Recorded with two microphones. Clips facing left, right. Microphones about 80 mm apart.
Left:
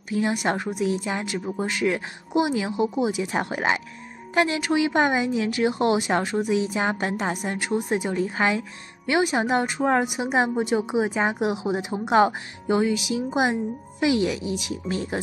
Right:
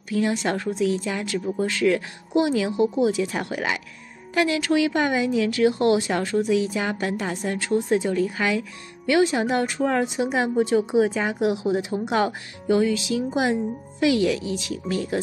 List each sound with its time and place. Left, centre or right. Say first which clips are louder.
0.1 s a woman's voice: right 1 dB; left